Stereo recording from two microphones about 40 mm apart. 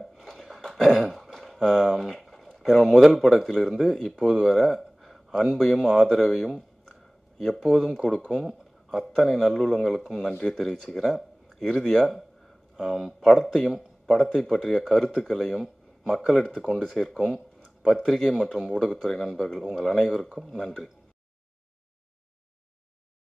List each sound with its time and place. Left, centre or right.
0.0 s speech: centre
16.4 s speech: centre
18.4 s speech: centre